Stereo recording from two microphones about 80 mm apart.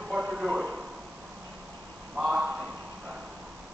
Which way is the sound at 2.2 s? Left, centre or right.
Centre.